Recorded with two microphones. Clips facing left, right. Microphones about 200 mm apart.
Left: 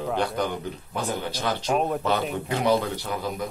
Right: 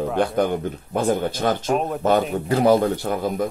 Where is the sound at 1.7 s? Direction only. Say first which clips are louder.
Right 2 dB; centre (ahead or behind).